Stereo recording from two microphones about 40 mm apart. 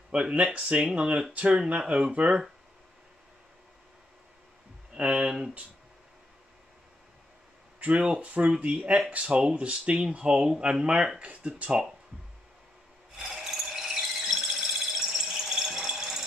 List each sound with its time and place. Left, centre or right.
0.1 s speech: right
4.9 s speech: right
8.2 s speech: right
13.1 s rub: centre
14.3 s rattle: centre